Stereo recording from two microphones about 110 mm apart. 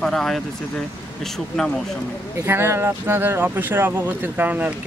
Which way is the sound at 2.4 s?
20° right (ahead or behind).